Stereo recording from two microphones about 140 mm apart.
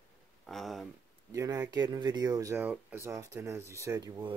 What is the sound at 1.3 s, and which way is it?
Speech, 25° right (ahead or behind).